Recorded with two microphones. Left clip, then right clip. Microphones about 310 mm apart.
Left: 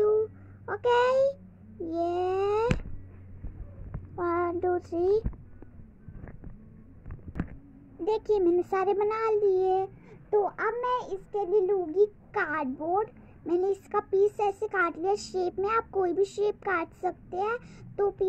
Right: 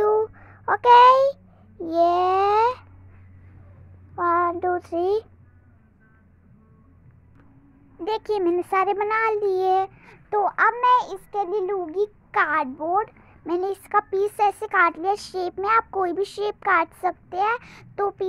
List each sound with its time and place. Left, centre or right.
0.2 s a sound: right
1.9 s babbling: right
4.1 s child singing: centre
8.1 s a child's voice: right
10.3 s a child's voice: right